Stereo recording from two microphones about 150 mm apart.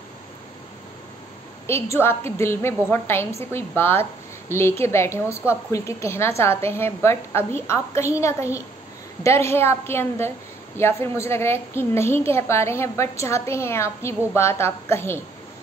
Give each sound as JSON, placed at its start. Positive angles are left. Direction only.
{"t": 1.7, "sound": "a child's voice", "side_deg": 15}